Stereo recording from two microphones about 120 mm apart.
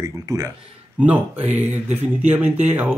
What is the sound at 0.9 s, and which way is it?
Speech, 15° right (ahead or behind).